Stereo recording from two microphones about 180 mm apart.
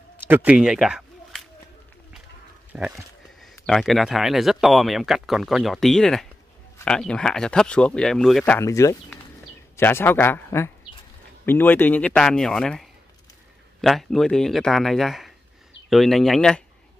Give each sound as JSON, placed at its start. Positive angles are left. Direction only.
{"t": 0.3, "sound": "speech", "side_deg": -5}
{"t": 2.7, "sound": "speech", "side_deg": -10}
{"t": 8.5, "sound": "speech", "side_deg": 15}